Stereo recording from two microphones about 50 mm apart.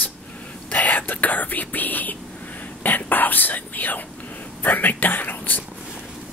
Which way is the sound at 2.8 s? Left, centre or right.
Left.